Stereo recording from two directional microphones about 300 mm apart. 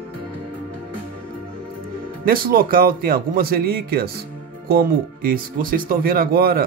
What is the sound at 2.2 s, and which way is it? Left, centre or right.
Speech, right.